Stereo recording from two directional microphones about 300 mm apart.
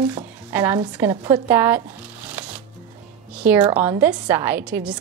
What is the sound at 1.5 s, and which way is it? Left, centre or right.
Shuffling cards, centre.